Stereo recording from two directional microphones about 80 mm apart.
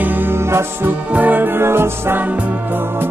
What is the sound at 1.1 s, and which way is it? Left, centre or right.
Music, right.